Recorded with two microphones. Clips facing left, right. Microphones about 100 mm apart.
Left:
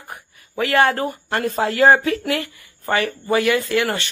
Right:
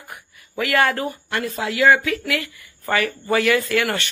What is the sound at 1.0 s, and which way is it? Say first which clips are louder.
Speech: left 3 dB; 45° left (ahead or behind).